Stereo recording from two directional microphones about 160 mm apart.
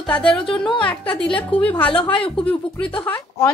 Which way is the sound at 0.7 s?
30° left (ahead or behind).